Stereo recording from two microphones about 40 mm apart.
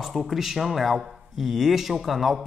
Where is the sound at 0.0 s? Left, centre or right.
Centre.